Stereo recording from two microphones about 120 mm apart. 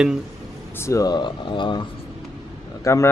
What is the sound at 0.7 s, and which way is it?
Speech, 25° left (ahead or behind).